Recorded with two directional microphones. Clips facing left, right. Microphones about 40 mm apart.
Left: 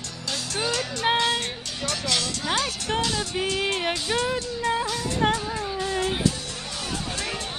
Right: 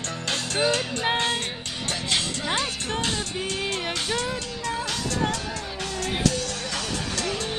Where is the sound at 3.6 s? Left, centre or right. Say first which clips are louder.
Left 2 dB; centre.